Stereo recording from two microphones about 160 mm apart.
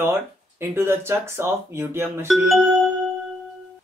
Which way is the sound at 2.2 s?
Centre (ahead or behind).